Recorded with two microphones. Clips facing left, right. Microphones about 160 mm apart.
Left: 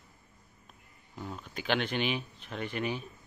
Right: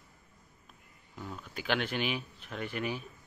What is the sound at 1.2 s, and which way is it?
Speech, 20° left (ahead or behind).